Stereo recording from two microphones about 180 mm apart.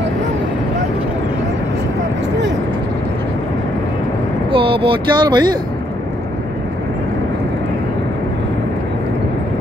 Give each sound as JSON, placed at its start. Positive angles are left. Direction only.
{"t": 4.5, "sound": "speech", "side_deg": -30}